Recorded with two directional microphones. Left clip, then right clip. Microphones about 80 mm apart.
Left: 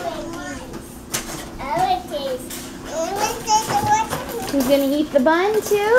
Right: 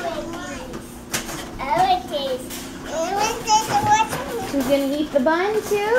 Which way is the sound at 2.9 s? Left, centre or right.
Centre.